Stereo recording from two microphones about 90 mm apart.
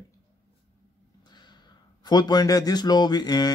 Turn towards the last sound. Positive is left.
turn(degrees=50)  # may be behind; listen again after turning